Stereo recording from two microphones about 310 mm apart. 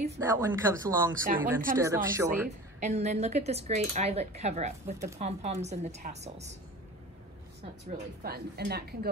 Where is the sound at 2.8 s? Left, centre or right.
Right.